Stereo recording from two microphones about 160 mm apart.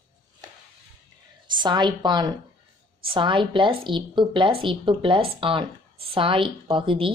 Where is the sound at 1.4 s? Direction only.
30° right (ahead or behind).